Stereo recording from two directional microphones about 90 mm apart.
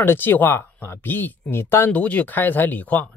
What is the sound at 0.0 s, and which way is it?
Speech, 25° left (ahead or behind).